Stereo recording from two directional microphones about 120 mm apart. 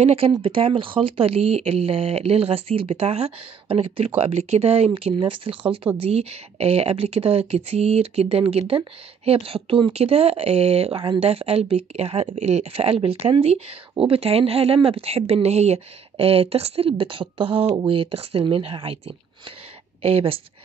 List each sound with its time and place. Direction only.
0.0 s speech: 50° right (ahead or behind)
4.2 s speech: 65° right (ahead or behind); by 5.8 s 45° right (ahead or behind)
5.9 s speech: 60° right (ahead or behind)